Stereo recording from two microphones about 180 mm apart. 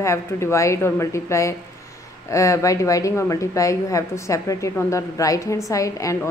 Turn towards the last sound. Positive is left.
turn(degrees=20)  # may be behind; listen again after turning